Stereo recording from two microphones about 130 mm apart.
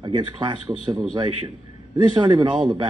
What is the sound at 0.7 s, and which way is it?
Speech, 10° right (ahead or behind).